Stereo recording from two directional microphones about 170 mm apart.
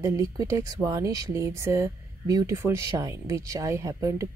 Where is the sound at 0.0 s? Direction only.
20° right (ahead or behind).